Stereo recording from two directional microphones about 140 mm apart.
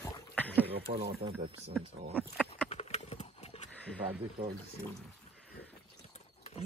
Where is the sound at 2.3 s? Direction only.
5° left (ahead or behind).